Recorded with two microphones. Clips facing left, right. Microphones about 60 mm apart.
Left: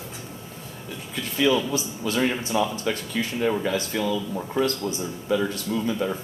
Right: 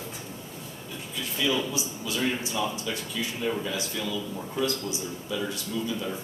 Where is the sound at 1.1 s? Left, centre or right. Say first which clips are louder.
Left 6 dB; left.